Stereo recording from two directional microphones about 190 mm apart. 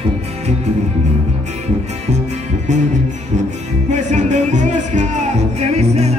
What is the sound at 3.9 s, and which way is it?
Music, 40° right (ahead or behind).